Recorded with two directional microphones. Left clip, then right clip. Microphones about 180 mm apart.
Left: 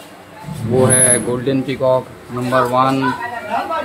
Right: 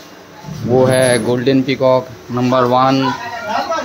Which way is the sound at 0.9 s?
30° right (ahead or behind).